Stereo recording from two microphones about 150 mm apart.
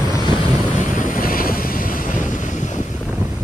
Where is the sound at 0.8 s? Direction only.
60° left (ahead or behind).